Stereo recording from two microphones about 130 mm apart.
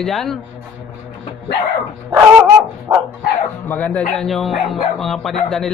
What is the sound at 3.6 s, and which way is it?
Speech, 15° left (ahead or behind).